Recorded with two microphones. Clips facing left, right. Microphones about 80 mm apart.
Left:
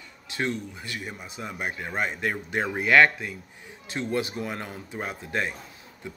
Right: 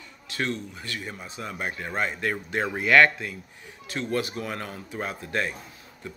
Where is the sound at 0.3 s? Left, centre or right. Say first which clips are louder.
Left 1 dB; centre.